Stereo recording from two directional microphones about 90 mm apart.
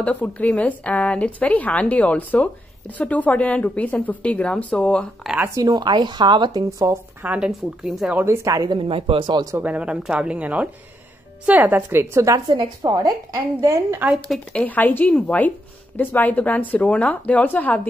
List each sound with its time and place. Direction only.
0.0 s a woman's voice: 15° left (ahead or behind)
5.5 s a woman's voice: 50° right (ahead or behind)
7.2 s speech: 10° right (ahead or behind)
8.3 s a woman's voice: 35° right (ahead or behind)
8.7 s speech: 90° right
9.3 s a woman's voice: 45° right (ahead or behind)
9.6 s a woman's voice: 15° right (ahead or behind); by 12.4 s 35° right (ahead or behind)
12.4 s a woman's voice: 50° right (ahead or behind)
14.5 s a woman's voice: 15° left (ahead or behind)